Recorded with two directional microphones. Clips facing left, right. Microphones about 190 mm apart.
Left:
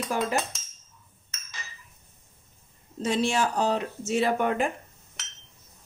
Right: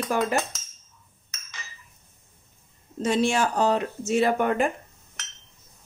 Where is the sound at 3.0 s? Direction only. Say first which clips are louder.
Right 3 dB; 50° right (ahead or behind).